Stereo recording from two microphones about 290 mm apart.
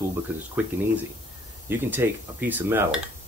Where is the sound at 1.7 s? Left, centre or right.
Centre.